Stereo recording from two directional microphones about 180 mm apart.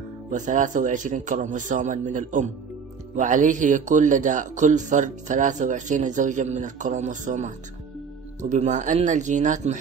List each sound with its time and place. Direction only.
0.3 s a man's voice: 45° right (ahead or behind)